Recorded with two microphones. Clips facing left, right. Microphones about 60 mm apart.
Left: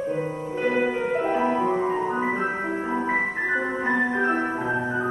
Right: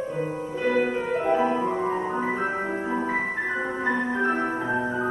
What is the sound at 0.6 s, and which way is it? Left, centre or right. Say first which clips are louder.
Music: even; left.